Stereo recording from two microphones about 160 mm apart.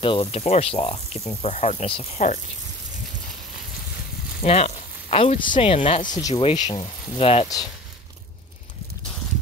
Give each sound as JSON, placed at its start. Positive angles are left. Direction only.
{"t": 0.0, "sound": "speech", "side_deg": 35}
{"t": 4.4, "sound": "speech", "side_deg": 40}
{"t": 6.1, "sound": "speech", "side_deg": 30}
{"t": 7.4, "sound": "speech", "side_deg": 25}